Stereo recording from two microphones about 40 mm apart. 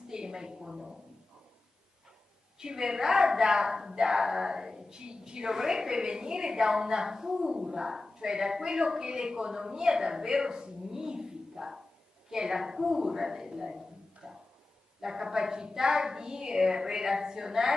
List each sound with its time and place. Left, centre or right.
0.1 s a woman's voice: centre
2.6 s a woman's voice: centre